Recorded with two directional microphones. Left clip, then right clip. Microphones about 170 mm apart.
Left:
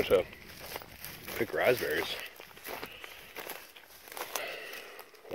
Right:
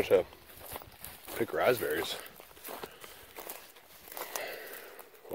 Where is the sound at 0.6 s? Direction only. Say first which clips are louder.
Left 2 dB; 60° left (ahead or behind).